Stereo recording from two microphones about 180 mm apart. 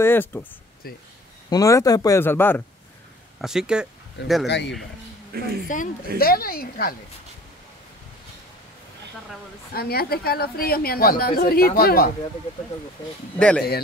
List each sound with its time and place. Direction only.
0.0 s speech: 10° left (ahead or behind)
0.8 s a woman's voice: 55° left (ahead or behind)
1.5 s speech: 20° left (ahead or behind)
3.3 s speech: 5° right (ahead or behind)
4.5 s speech: 75° left (ahead or behind)
5.3 s speech: 60° right (ahead or behind)
5.7 s a woman's voice: 45° left (ahead or behind)
6.1 s a woman's voice: 55° left (ahead or behind)
9.8 s a woman's voice: 60° left (ahead or behind)
13.4 s speech: 5° left (ahead or behind)